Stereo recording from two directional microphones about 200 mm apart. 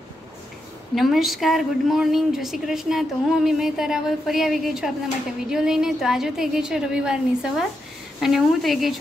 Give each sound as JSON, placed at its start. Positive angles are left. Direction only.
{"t": 0.9, "sound": "a woman's voice", "side_deg": 0}